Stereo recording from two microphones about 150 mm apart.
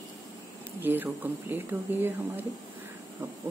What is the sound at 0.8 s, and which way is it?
Speech, 15° right (ahead or behind).